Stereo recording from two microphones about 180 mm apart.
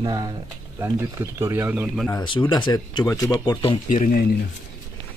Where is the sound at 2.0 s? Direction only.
25° left (ahead or behind).